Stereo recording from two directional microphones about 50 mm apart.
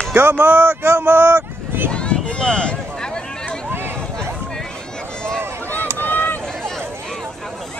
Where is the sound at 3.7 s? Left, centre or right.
Right.